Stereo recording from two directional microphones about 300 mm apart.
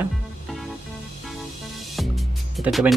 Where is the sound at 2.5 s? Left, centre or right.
Centre.